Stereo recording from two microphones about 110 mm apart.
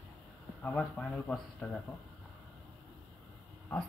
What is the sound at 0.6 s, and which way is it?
Speech, 15° left (ahead or behind).